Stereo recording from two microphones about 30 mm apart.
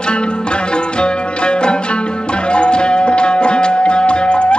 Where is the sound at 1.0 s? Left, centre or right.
Left.